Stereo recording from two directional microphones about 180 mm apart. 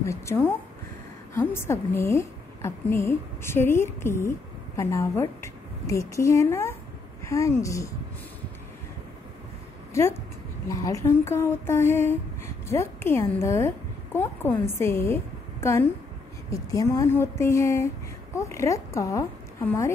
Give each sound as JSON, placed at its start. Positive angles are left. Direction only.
{"t": 0.0, "sound": "a woman's voice", "side_deg": 15}
{"t": 9.9, "sound": "a woman's voice", "side_deg": 15}